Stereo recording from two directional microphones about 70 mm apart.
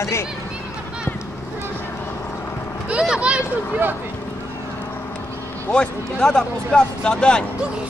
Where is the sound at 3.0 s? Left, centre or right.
Centre.